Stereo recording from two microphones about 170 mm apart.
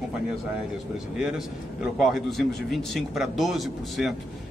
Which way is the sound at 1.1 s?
5° right (ahead or behind).